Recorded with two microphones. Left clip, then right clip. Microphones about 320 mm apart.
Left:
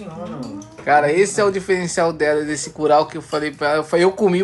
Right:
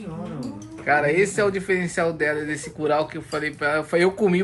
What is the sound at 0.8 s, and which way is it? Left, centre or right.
Speech, centre.